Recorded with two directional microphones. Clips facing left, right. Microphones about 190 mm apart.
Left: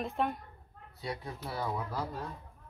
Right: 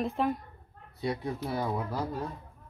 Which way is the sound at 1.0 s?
20° right (ahead or behind).